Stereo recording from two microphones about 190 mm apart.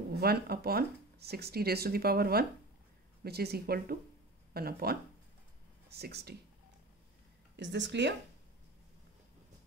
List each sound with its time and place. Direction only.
0.1 s speech: 55° right (ahead or behind)
7.5 s speech: 70° right (ahead or behind)